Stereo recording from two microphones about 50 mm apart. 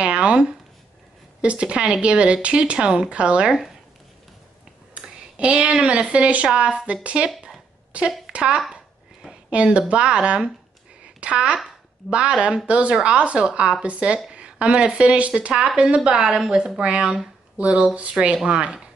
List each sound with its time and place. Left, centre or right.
0.0 s speech: right
4.9 s speech: right
7.2 s a sound: centre
7.9 s speech: right